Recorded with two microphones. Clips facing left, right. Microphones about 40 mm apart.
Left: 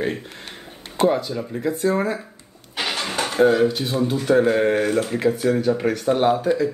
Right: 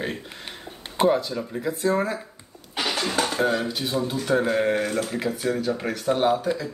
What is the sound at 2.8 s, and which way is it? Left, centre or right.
Music, left.